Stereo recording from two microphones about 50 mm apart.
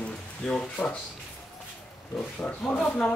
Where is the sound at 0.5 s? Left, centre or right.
Centre.